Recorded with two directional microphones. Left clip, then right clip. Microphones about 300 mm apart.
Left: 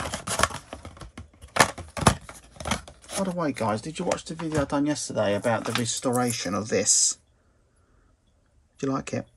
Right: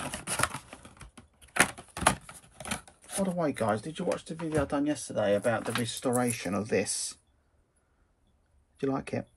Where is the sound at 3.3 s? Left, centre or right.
Centre.